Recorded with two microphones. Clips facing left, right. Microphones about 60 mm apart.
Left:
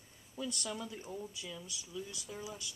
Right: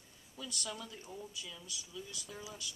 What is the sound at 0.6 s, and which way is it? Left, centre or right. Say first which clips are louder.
Speech: left 3 dB; centre.